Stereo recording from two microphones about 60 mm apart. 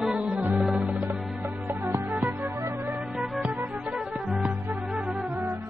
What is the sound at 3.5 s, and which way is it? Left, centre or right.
Music, right.